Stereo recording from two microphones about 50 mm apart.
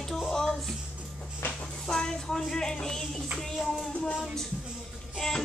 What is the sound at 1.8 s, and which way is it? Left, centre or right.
Child singing, centre.